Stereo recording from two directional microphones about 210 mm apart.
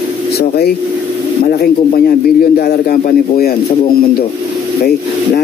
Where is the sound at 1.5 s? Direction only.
45° left (ahead or behind).